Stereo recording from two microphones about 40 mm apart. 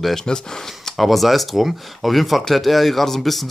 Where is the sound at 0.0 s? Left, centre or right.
Centre.